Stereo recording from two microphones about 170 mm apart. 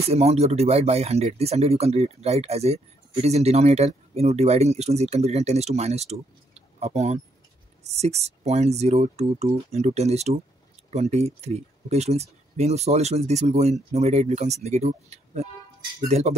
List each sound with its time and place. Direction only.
0.1 s speech: 40° right (ahead or behind)